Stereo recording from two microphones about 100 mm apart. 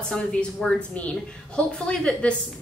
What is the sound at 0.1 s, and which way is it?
A woman's voice, 5° left (ahead or behind).